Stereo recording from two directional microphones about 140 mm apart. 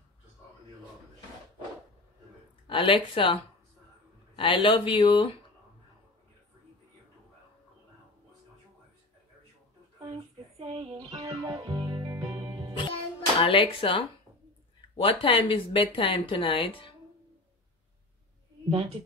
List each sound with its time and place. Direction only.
2.7 s speech: 40° left (ahead or behind)
4.4 s speech: 35° left (ahead or behind)
10.6 s speech: 45° right (ahead or behind)
11.2 s music: 25° right (ahead or behind)
12.7 s music: 40° left (ahead or behind)
15.0 s speech: 40° left (ahead or behind)